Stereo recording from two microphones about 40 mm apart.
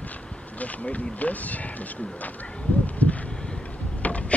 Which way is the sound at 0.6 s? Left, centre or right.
Left.